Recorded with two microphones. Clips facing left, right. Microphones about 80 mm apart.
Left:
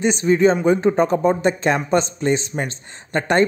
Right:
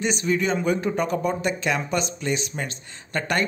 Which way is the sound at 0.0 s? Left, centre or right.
Left.